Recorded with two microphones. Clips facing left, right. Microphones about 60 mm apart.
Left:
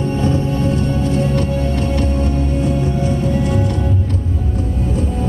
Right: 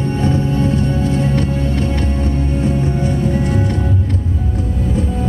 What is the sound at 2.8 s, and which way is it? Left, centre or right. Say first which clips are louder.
Music: right 1 dB; right.